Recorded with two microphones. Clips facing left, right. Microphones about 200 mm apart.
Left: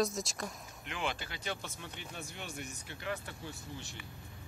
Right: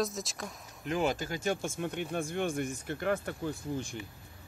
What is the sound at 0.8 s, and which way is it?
Speech, 40° right (ahead or behind).